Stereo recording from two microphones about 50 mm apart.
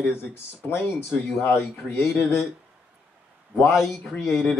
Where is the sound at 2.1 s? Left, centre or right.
Left.